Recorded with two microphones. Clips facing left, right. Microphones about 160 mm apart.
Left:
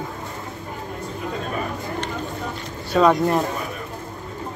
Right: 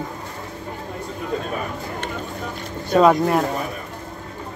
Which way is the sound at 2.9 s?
10° right (ahead or behind).